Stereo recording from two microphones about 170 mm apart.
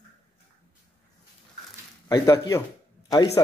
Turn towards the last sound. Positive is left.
turn(degrees=20)  # may be behind; listen again after turning